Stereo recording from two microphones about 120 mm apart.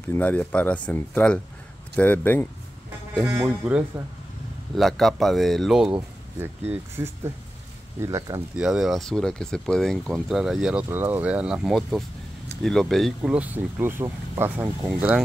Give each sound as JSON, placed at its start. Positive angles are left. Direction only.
{"t": 0.1, "sound": "speech", "side_deg": 15}
{"t": 3.4, "sound": "speech", "side_deg": -10}
{"t": 4.7, "sound": "speech", "side_deg": 0}
{"t": 6.7, "sound": "speech", "side_deg": -20}
{"t": 8.5, "sound": "speech", "side_deg": -5}
{"t": 13.2, "sound": "speech", "side_deg": -10}
{"t": 14.9, "sound": "speech", "side_deg": -10}